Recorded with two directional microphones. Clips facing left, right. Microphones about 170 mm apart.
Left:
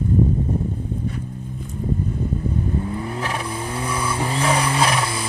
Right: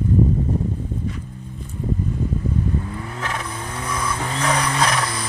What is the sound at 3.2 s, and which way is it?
Vehicle, 10° left (ahead or behind).